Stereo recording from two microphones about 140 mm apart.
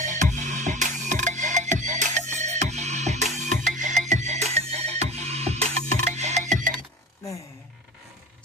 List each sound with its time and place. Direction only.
0.0 s music: 60° right (ahead or behind)